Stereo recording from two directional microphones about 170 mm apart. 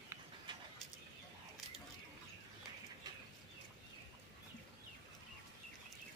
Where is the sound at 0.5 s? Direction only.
30° right (ahead or behind).